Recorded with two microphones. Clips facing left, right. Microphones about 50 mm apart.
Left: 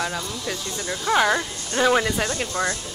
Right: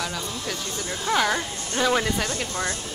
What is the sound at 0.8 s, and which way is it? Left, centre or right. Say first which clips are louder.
Speech: left 3 dB; left.